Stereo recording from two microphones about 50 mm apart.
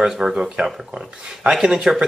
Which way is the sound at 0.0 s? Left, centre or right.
Centre.